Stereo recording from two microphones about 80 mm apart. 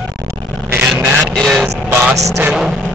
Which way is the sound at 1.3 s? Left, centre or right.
Centre.